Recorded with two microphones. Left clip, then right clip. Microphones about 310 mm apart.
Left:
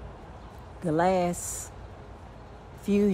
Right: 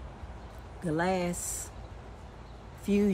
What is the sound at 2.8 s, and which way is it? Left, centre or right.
Speech, centre.